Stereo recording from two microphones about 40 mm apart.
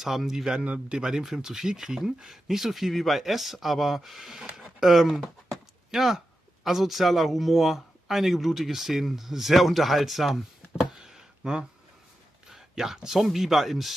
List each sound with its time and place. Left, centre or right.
0.0 s speech: centre
0.3 s speech: centre
0.7 s speech: right
1.2 s a man's voice: centre
10.9 s a sound: centre
12.4 s speech: centre